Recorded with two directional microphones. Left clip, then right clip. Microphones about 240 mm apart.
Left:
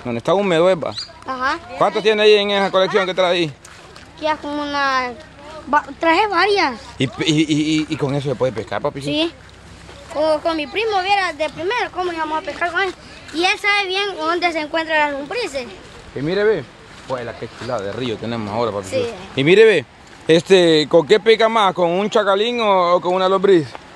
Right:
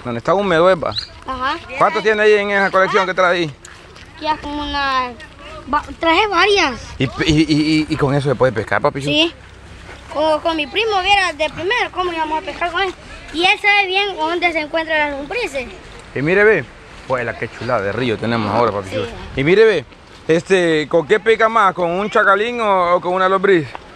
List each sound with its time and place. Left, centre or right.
0.0 s speech: centre
6.0 s speech: centre
9.0 s speech: centre
16.2 s speech: right
18.9 s speech: centre